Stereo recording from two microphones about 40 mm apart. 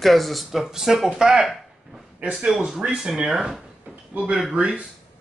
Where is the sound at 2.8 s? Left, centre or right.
Right.